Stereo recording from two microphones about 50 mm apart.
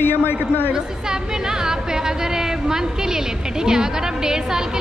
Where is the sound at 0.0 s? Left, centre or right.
Left.